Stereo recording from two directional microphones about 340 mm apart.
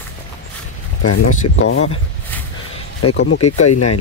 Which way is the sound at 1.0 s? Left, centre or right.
Left.